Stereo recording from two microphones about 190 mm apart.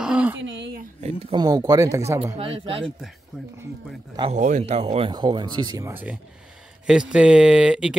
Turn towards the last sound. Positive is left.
turn(degrees=-5)  # may be behind; listen again after turning